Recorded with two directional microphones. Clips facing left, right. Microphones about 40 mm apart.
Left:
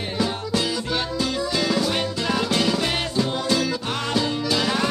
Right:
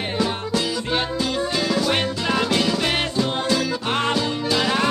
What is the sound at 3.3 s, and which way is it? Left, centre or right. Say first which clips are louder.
Music: right 1 dB; right.